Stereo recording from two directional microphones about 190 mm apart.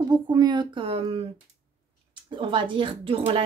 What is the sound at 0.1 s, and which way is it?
A woman's voice, 20° right (ahead or behind).